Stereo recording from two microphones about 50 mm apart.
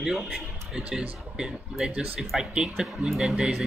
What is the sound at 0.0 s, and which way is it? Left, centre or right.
Speech, centre.